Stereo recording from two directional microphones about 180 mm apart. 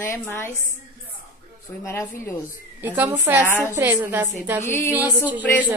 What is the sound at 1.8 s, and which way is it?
Speech, 15° left (ahead or behind).